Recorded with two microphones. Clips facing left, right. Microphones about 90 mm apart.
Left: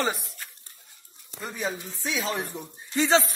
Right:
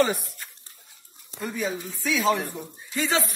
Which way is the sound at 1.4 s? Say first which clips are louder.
Right 3 dB; 30° left (ahead or behind).